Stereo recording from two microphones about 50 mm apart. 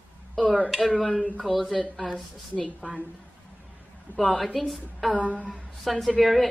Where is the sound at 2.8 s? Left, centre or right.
Centre.